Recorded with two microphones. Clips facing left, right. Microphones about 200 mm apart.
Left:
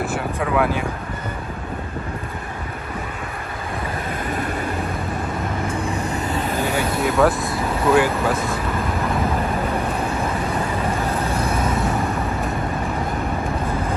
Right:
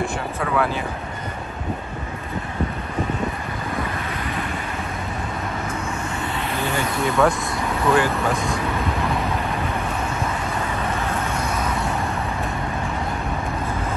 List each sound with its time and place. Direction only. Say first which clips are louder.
0.0 s vehicle: left 2 dB; 10° left (ahead or behind)
5.7 s vehicle: left 4 dB; 35° left (ahead or behind)
6.7 s vehicle: even; centre (ahead or behind)
11.1 s vehicle: left 3 dB; 35° left (ahead or behind)